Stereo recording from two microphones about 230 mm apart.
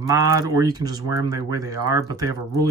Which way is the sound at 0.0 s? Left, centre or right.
Centre.